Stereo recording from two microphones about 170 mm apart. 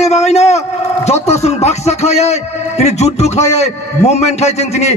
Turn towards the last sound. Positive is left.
turn(degrees=40)  # may be behind; listen again after turning